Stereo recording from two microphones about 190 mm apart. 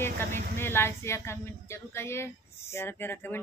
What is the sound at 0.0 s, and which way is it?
Speech, 10° left (ahead or behind).